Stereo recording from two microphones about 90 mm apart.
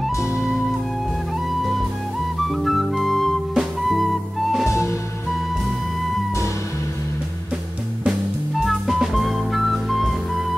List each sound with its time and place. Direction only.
2.4 s music: centre (ahead or behind)
4.6 s music: 30° left (ahead or behind)
8.0 s music: 5° right (ahead or behind)